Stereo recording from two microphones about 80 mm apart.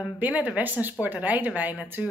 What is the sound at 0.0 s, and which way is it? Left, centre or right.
Speech, centre.